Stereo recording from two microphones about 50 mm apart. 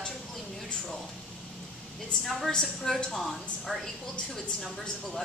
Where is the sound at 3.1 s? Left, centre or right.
Centre.